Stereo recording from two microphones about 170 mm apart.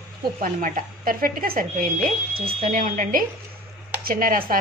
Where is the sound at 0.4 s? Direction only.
55° right (ahead or behind).